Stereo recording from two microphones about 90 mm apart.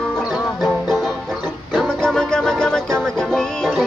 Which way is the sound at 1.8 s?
5° left (ahead or behind).